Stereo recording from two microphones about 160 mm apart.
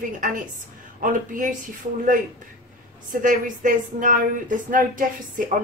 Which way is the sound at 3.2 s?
55° right (ahead or behind).